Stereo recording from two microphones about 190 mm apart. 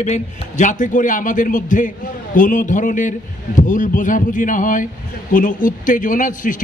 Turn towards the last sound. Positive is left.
turn(degrees=45)  # may be behind; listen again after turning